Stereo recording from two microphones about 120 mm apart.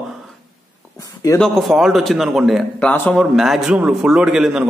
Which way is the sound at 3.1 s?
Centre (ahead or behind).